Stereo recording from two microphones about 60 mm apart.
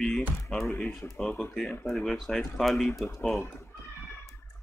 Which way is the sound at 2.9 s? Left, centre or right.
Left.